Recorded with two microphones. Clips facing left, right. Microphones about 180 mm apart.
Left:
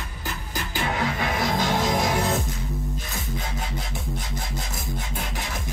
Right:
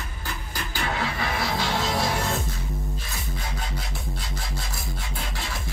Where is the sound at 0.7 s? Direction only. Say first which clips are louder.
Left 2 dB; 20° left (ahead or behind).